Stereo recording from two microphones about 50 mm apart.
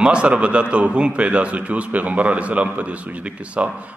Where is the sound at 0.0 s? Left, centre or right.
Right.